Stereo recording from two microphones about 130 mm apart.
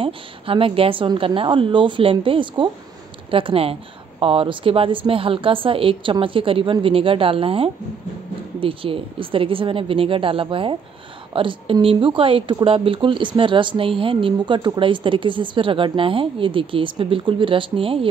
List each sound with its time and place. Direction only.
0.0 s a woman's voice: 45° right (ahead or behind)